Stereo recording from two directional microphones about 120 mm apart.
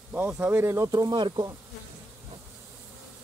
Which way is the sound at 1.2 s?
40° right (ahead or behind).